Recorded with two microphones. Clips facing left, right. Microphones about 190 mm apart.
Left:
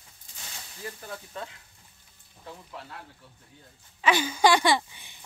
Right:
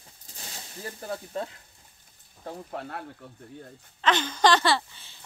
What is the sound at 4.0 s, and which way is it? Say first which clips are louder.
Speech: even; 10° left (ahead or behind).